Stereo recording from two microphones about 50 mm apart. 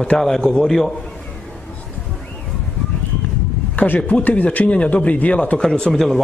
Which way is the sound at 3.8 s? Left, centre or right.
Left.